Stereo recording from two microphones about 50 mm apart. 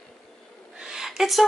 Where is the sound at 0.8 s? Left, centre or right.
Centre.